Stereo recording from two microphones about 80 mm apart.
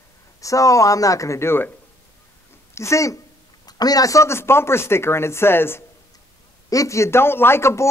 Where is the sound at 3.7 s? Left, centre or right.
Left.